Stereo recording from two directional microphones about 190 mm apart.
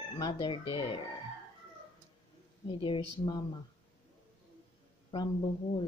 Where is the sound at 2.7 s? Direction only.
25° left (ahead or behind).